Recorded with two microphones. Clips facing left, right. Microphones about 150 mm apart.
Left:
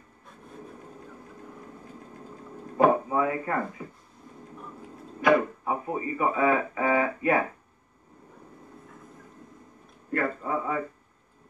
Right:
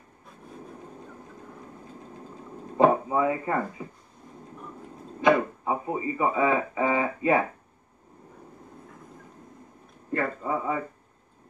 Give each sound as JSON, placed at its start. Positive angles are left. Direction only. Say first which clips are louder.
{"t": 2.8, "sound": "a sound", "louder": "right 1 dB", "side_deg": -20}
{"t": 5.2, "sound": "speech", "louder": "even", "side_deg": -20}
{"t": 10.1, "sound": "speech", "louder": "even", "side_deg": -20}